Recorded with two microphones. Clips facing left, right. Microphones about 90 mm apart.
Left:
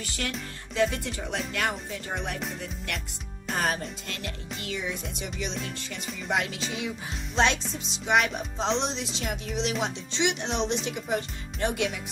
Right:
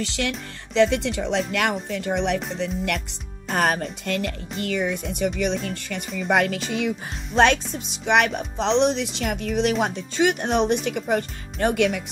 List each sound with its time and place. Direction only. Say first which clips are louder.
0.0 s speech: right 8 dB; 90° right
0.7 s speech: right 7 dB; 75° right (ahead or behind)
1.5 s speech: right 6 dB; 75° right (ahead or behind)
3.4 s speech: right 6 dB; 60° right (ahead or behind)